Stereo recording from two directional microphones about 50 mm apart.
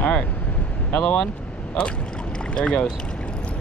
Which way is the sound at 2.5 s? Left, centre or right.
Centre.